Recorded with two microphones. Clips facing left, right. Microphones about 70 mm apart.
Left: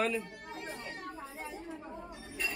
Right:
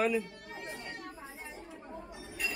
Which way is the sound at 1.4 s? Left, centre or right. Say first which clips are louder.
Left 4 dB; centre.